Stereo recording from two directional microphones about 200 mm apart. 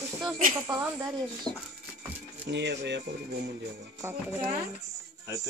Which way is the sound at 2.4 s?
60° right (ahead or behind).